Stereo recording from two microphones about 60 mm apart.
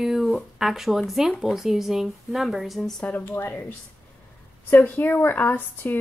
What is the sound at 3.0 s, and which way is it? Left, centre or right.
Speech, left.